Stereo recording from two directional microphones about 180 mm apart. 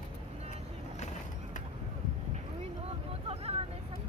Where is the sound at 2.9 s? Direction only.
35° right (ahead or behind).